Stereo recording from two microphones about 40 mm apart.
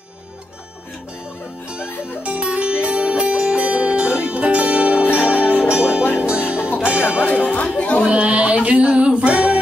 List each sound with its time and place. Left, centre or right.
1.8 s music: right
7.5 s music: left
8.1 s a sound: right